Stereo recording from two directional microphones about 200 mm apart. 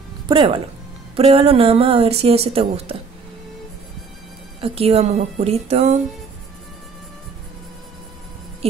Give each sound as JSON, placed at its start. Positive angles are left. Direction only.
{"t": 0.3, "sound": "a woman's voice", "side_deg": -25}
{"t": 4.6, "sound": "a woman's voice", "side_deg": -30}